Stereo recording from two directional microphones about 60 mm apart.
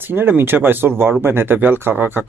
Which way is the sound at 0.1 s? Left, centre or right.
Right.